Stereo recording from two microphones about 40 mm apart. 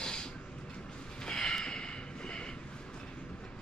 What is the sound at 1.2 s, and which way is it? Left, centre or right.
Snort, centre.